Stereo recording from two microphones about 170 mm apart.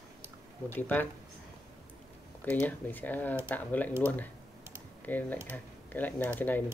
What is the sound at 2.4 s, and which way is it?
Speech, 10° left (ahead or behind).